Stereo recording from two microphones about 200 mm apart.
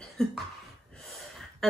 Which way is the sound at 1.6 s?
Centre (ahead or behind).